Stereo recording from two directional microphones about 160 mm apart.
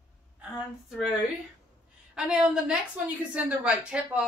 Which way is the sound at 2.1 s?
5° right (ahead or behind).